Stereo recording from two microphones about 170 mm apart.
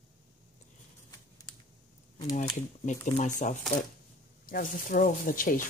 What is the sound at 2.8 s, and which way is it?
Speech, 45° left (ahead or behind).